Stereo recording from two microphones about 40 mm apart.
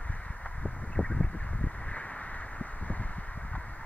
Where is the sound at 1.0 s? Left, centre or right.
Centre.